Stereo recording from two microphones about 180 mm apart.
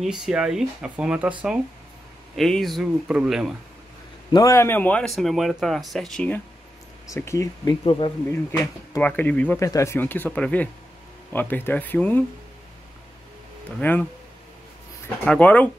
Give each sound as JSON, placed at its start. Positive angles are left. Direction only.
{"t": 0.0, "sound": "speech", "side_deg": -5}
{"t": 2.3, "sound": "speech", "side_deg": 0}
{"t": 4.3, "sound": "speech", "side_deg": 20}
{"t": 13.7, "sound": "speech", "side_deg": 10}
{"t": 15.2, "sound": "speech", "side_deg": 10}